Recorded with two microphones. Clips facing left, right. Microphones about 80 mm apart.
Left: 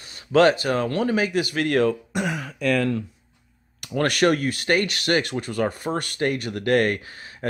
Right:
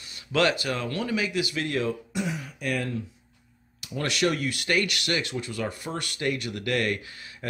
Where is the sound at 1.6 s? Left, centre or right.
Left.